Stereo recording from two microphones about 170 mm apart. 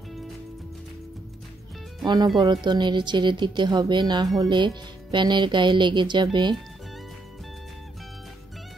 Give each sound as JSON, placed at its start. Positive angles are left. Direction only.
{"t": 2.0, "sound": "speech", "side_deg": -25}